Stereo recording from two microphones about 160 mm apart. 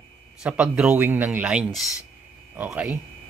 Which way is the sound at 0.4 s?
5° right (ahead or behind).